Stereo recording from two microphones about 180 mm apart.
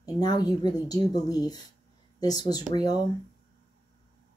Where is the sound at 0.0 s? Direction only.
20° left (ahead or behind).